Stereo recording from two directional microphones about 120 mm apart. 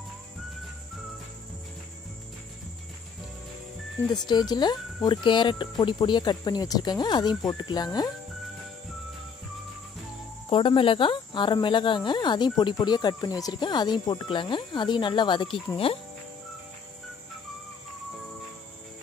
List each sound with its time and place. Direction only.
4.1 s speech: 35° left (ahead or behind)
10.5 s speech: 45° left (ahead or behind)
15.8 s cricket: 50° left (ahead or behind)